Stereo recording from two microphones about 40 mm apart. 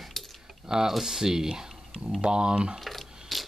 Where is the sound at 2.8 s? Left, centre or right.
Centre.